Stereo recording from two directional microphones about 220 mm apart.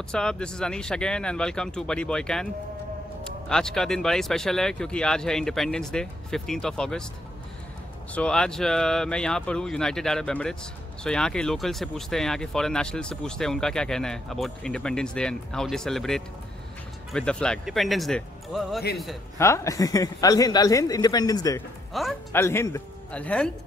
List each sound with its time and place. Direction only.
0.1 s speech: 5° left (ahead or behind)
3.4 s speech: 5° left (ahead or behind)
8.1 s speech: 5° left (ahead or behind)
19.3 s speech: 10° left (ahead or behind)
21.9 s speech: centre (ahead or behind)
22.3 s speech: 10° left (ahead or behind)